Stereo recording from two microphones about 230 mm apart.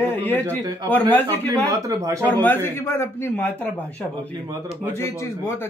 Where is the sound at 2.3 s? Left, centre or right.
Centre.